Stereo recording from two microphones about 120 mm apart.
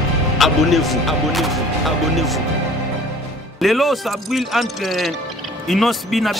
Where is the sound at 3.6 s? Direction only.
Centre (ahead or behind).